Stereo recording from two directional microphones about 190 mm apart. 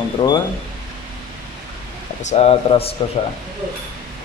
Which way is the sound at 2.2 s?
35° left (ahead or behind).